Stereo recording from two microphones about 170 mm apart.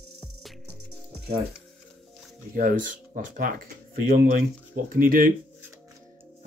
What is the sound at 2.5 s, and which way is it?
Speech, 55° right (ahead or behind).